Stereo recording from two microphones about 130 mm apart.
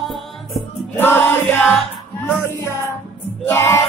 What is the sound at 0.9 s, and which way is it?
Music, 15° left (ahead or behind).